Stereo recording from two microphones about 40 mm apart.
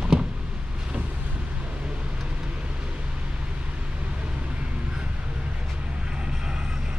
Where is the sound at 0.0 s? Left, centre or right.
Right.